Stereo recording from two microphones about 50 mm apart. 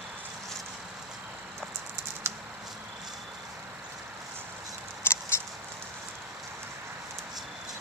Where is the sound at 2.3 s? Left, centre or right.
Right.